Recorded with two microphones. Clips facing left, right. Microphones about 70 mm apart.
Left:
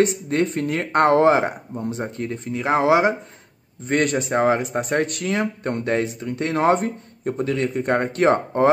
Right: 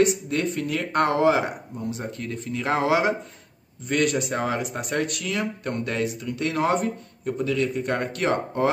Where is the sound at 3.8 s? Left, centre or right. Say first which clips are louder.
Left 2 dB; left.